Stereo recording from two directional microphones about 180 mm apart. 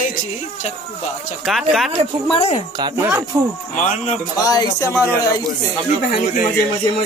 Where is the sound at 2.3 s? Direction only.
35° left (ahead or behind).